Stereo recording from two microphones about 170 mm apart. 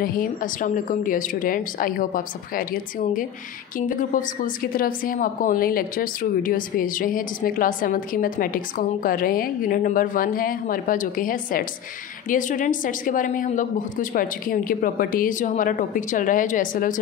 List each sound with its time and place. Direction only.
0.0 s a woman's voice: 60° left (ahead or behind)